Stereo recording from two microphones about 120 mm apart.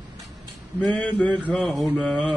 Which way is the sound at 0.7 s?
10° left (ahead or behind).